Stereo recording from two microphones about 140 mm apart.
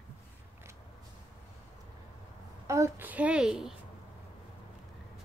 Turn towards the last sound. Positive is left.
turn(degrees=-5)  # may be behind; listen again after turning